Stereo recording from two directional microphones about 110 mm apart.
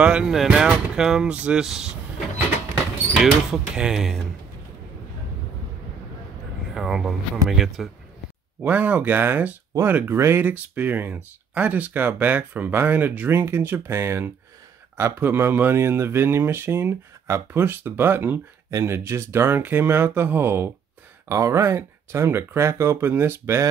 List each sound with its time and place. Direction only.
0.0 s speech: 10° right (ahead or behind)
3.5 s speech: 5° right (ahead or behind)
6.7 s speech: 5° right (ahead or behind)
8.6 s speech: 15° right (ahead or behind)